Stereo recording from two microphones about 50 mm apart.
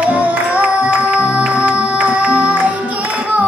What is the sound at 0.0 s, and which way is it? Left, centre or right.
Music, right.